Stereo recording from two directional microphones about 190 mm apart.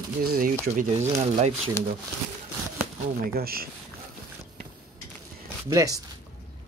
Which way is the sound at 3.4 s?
55° right (ahead or behind).